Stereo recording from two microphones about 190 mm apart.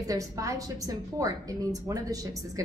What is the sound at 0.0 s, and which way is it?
A woman's voice, 15° right (ahead or behind).